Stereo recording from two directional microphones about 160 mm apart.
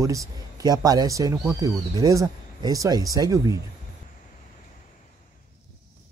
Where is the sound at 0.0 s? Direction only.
20° right (ahead or behind).